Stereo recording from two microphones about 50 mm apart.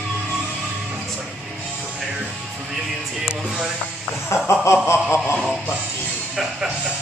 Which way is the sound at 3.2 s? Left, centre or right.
Centre.